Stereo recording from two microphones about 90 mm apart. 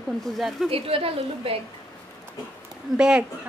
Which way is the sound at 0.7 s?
90° right.